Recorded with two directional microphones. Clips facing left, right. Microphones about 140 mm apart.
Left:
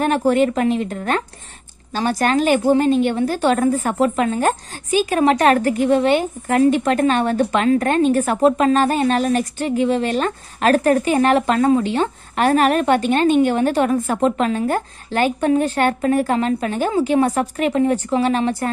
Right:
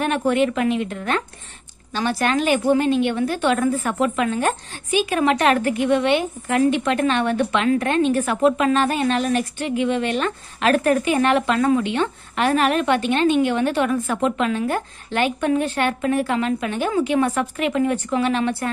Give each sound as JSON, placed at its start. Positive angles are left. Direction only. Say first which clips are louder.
{"t": 0.0, "sound": "a woman's voice", "louder": "left 3 dB", "side_deg": 35}